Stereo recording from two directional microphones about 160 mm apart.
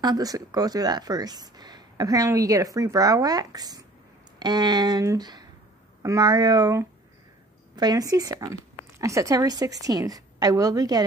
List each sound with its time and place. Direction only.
0.0 s a woman's voice: 25° right (ahead or behind)